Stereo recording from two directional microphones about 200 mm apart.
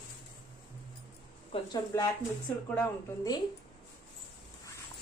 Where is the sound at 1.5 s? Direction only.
30° left (ahead or behind).